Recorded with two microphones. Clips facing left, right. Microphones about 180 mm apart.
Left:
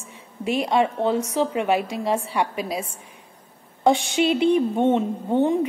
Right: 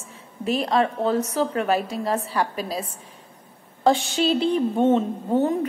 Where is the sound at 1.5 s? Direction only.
15° left (ahead or behind).